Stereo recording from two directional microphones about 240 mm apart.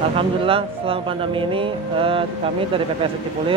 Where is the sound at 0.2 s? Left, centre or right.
Right.